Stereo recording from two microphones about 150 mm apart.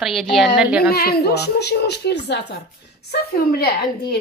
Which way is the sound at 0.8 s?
90° left.